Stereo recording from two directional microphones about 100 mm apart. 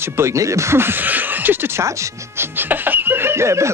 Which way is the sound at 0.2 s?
30° right (ahead or behind).